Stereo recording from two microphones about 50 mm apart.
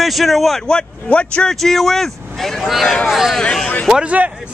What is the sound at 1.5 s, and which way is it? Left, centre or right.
Speech, centre.